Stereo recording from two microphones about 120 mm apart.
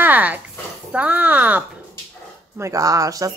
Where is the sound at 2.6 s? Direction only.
30° right (ahead or behind).